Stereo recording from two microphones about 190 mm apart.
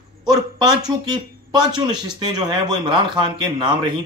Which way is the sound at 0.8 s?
20° right (ahead or behind).